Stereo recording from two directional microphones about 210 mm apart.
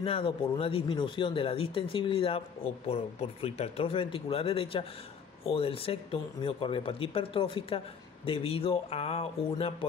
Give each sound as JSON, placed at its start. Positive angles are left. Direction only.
{"t": 0.0, "sound": "speech", "side_deg": 25}